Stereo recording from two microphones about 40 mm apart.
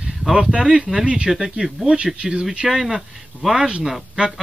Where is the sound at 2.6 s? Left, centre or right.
Centre.